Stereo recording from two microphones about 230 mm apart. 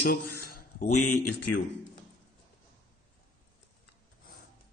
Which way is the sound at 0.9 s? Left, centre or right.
Left.